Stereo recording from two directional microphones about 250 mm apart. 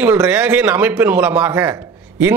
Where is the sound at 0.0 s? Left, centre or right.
Centre.